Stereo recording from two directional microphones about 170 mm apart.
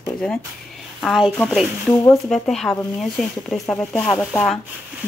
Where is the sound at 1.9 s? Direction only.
20° left (ahead or behind).